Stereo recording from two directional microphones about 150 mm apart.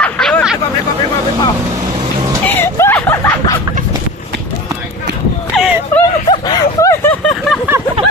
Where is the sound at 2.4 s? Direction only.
15° left (ahead or behind).